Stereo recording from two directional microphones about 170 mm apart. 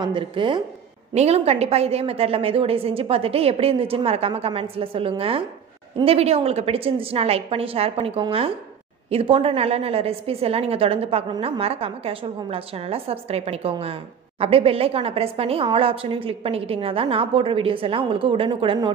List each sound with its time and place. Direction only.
0.0 s a woman's voice: 30° right (ahead or behind)